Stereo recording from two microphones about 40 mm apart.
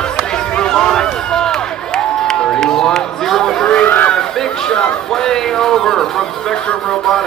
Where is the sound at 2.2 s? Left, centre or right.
Centre.